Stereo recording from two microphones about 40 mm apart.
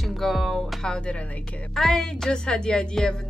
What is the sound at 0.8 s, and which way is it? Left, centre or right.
Speech, left.